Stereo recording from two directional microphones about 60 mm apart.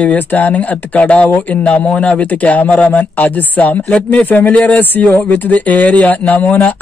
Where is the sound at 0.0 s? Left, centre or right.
Left.